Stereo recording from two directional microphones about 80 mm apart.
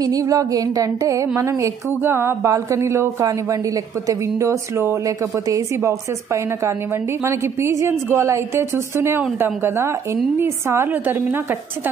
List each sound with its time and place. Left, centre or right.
0.0 s music: right
10.4 s a woman's voice: right